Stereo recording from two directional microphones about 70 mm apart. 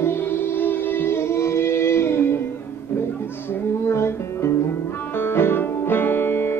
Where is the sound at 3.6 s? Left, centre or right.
Left.